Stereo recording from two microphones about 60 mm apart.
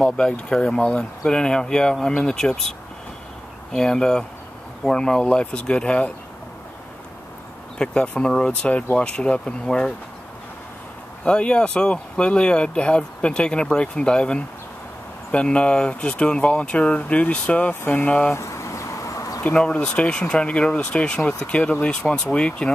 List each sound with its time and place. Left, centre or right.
0.0 s speech: centre
3.7 s speech: centre
7.8 s speech: centre
11.2 s speech: centre
18.3 s a sound: left
19.4 s speech: centre